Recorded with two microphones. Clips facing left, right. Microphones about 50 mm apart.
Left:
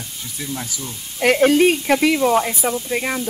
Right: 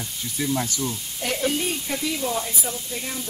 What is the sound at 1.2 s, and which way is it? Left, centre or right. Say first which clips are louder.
Speech: left 12 dB; left.